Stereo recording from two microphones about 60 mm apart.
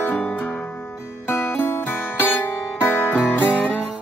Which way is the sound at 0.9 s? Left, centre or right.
Left.